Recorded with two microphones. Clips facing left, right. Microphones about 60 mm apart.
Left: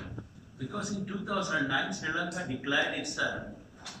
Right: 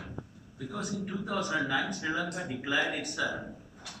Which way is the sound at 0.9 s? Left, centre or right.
Right.